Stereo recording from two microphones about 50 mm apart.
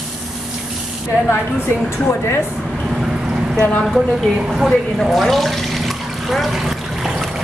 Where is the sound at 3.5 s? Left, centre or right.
Left.